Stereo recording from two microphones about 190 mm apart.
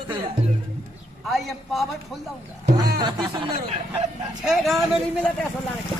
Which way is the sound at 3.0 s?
25° right (ahead or behind).